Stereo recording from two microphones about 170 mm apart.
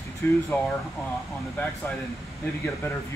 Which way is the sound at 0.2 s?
10° left (ahead or behind).